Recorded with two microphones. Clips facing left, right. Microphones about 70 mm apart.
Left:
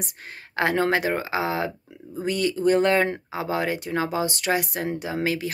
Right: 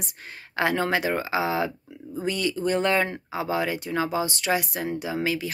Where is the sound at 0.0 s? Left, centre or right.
Left.